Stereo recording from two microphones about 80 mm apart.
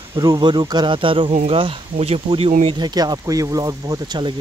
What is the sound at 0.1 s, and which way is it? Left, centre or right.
Speech, right.